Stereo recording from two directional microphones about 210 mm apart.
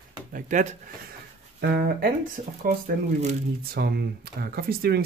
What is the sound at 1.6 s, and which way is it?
Speech, 50° right (ahead or behind).